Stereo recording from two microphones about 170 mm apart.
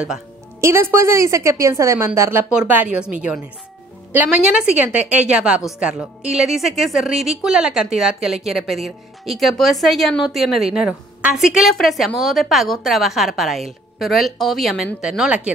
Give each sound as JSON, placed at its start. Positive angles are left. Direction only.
{"t": 0.6, "sound": "speech", "side_deg": -15}
{"t": 4.1, "sound": "a woman's voice", "side_deg": -10}